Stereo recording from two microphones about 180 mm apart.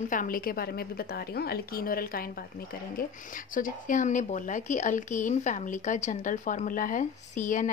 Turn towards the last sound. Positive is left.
turn(degrees=45)  # may be behind; listen again after turning